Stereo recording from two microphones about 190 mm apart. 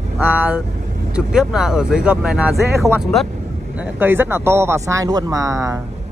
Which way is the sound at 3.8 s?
10° right (ahead or behind).